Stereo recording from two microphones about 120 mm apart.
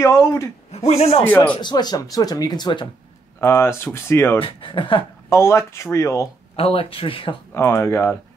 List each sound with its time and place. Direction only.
0.0 s speech: 25° left (ahead or behind)
0.7 s a man's voice: 65° left (ahead or behind)
1.2 s speech: 15° left (ahead or behind)
1.6 s speech: 35° left (ahead or behind)
3.3 s speech: 20° left (ahead or behind)
4.4 s speech: 45° left (ahead or behind)
5.3 s speech: 25° left (ahead or behind)
6.5 s speech: 55° left (ahead or behind)
7.5 s speech: 20° left (ahead or behind)